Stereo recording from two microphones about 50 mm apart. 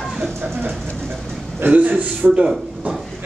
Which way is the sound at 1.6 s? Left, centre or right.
Right.